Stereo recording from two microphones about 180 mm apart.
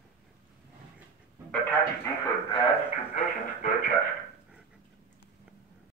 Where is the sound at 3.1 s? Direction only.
50° left (ahead or behind).